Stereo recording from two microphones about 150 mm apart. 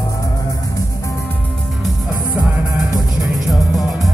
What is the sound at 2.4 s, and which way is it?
Music, centre (ahead or behind).